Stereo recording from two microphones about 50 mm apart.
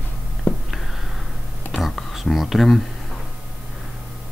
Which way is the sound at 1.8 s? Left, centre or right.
Centre.